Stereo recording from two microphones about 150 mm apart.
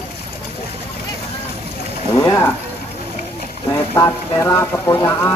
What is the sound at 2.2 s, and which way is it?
Speech, 20° left (ahead or behind).